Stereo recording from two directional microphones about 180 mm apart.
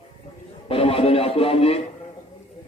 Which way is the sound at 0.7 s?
30° left (ahead or behind).